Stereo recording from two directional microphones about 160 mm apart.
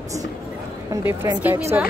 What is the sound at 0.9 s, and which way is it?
Speech, 15° right (ahead or behind).